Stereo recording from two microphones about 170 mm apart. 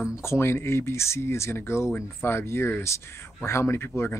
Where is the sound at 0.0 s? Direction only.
15° left (ahead or behind).